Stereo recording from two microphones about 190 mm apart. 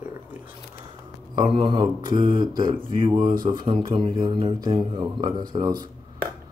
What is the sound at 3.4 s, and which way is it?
Speech, 25° right (ahead or behind).